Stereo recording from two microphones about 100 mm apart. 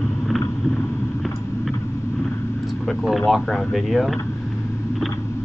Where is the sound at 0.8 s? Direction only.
15° left (ahead or behind).